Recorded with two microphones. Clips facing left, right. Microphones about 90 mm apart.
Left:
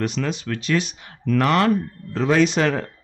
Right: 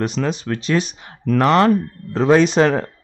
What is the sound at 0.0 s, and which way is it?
A man's voice, 35° right (ahead or behind).